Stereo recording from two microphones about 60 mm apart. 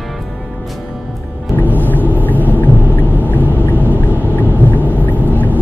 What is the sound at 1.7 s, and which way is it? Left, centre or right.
Rumble, left.